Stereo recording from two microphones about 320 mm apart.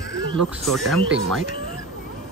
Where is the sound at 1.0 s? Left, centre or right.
Right.